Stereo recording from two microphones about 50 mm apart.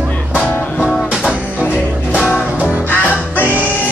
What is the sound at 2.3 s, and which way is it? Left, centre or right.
Music, left.